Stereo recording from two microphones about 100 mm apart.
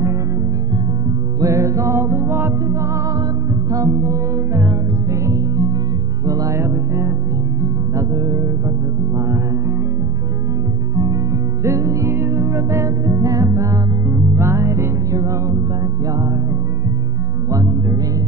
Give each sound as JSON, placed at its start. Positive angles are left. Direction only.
{"t": 1.4, "sound": "music", "side_deg": -30}
{"t": 11.6, "sound": "music", "side_deg": -30}
{"t": 17.5, "sound": "music", "side_deg": -35}